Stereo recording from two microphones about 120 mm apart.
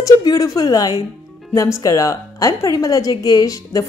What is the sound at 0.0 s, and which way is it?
A woman's voice, 30° left (ahead or behind).